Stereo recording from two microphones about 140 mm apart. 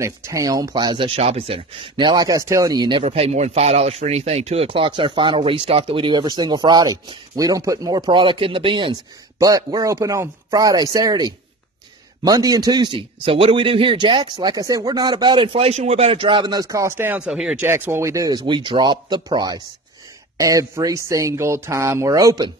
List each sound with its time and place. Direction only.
0.0 s speech: 20° right (ahead or behind)
3.0 s speech: 45° right (ahead or behind)
9.4 s speech: 25° right (ahead or behind); by 17.6 s 5° right (ahead or behind)
17.6 s speech: 15° right (ahead or behind)
18.5 s speech: 35° right (ahead or behind)